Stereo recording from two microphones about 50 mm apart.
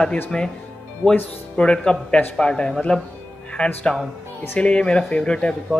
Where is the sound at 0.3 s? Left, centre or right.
Centre.